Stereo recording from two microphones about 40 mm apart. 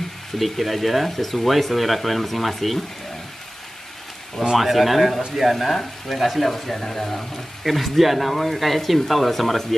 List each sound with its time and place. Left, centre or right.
0.4 s speech: centre
4.4 s speech: centre